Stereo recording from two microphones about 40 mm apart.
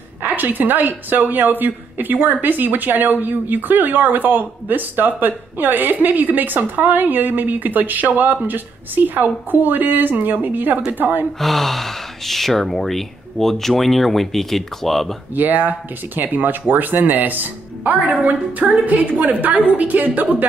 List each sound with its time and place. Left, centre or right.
0.2 s a woman's voice: right
11.3 s speech: centre
15.3 s a woman's voice: right